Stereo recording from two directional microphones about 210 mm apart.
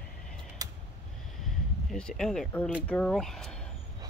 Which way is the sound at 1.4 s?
Centre (ahead or behind).